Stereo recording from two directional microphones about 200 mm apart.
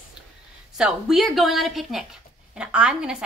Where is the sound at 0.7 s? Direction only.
Centre (ahead or behind).